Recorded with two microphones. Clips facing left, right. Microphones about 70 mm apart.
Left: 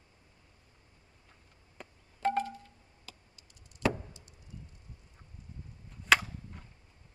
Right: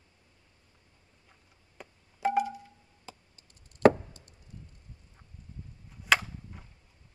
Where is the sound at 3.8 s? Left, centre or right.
Right.